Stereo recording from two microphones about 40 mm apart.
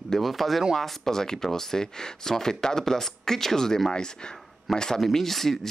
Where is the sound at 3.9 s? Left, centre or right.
Left.